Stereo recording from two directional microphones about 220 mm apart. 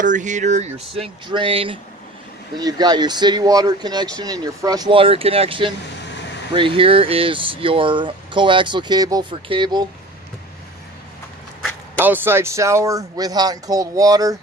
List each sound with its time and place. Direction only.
0.0 s speech: 35° right (ahead or behind)
12.0 s speech: 10° right (ahead or behind)